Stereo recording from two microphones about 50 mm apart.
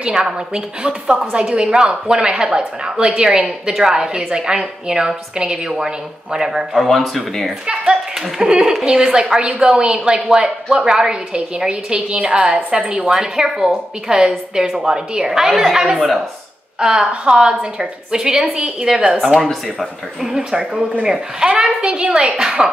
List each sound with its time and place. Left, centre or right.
0.0 s a woman's voice: centre
7.6 s a woman's voice: centre
16.8 s a woman's voice: centre
19.4 s speech: centre
20.2 s a woman's voice: centre